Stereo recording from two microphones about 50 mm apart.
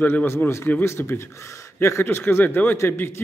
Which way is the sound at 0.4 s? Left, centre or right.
Left.